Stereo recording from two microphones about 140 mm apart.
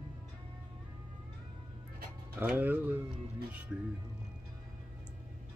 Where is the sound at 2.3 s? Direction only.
15° right (ahead or behind).